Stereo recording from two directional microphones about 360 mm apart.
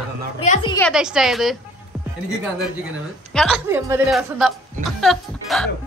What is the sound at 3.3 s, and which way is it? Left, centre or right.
Speech, centre.